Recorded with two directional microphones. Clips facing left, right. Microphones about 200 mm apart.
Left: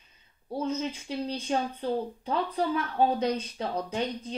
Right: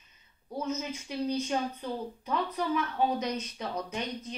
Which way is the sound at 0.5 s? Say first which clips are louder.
Left 3 dB; 30° left (ahead or behind).